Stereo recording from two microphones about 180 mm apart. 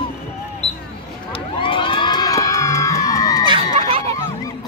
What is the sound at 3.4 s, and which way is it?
Crowd, 30° right (ahead or behind).